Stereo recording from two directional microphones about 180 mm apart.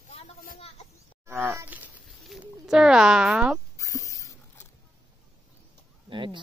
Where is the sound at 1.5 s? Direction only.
10° right (ahead or behind).